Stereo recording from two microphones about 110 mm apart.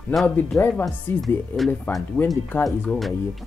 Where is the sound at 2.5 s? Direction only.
20° left (ahead or behind).